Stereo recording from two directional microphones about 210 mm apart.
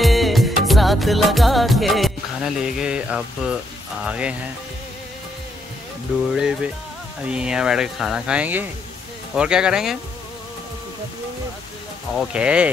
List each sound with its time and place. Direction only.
0.0 s music: centre (ahead or behind)
4.0 s speech: 5° right (ahead or behind)
6.3 s speech: 5° right (ahead or behind)
12.2 s speech: 5° right (ahead or behind)